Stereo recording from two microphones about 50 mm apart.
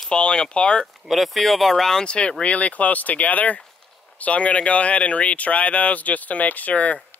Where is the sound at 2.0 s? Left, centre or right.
Left.